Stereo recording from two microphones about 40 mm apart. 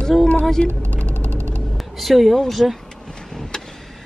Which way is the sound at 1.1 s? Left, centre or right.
Right.